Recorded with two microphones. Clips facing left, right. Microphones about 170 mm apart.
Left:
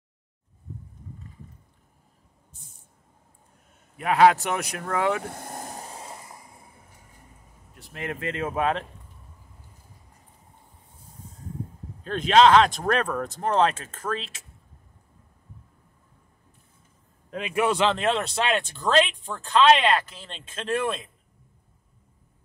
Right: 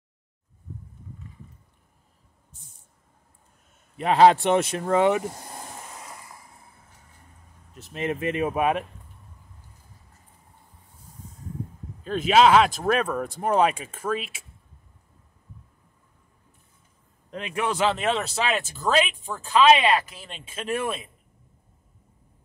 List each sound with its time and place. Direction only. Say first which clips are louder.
3.9 s speech: right 2 dB; 25° right (ahead or behind)
5.2 s vehicle: even; 55° left (ahead or behind); by 6.6 s 20° left (ahead or behind)
7.7 s speech: right 5 dB; 20° right (ahead or behind)
12.0 s speech: even; 5° right (ahead or behind)
17.3 s speech: left 3 dB; 5° left (ahead or behind)